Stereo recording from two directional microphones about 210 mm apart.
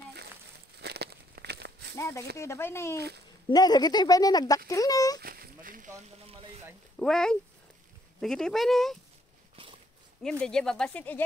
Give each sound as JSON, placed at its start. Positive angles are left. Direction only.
{"t": 0.7, "sound": "crumpling", "side_deg": -50}
{"t": 2.0, "sound": "speech", "side_deg": 15}
{"t": 5.2, "sound": "a sound", "side_deg": -45}
{"t": 6.2, "sound": "a sound", "side_deg": -30}
{"t": 7.0, "sound": "speech", "side_deg": 5}
{"t": 10.4, "sound": "speech", "side_deg": 5}